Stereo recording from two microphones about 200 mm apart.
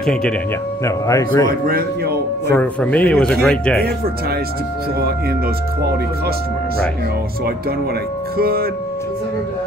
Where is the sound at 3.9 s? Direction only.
50° right (ahead or behind).